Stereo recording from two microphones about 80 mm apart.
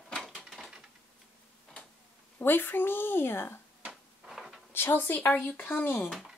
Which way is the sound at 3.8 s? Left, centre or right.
Centre.